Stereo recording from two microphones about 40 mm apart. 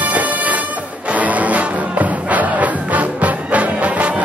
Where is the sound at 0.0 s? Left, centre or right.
Right.